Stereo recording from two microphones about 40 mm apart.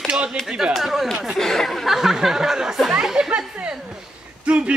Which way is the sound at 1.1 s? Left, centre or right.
Centre.